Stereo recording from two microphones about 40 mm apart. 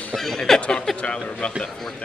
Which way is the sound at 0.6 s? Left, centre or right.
Left.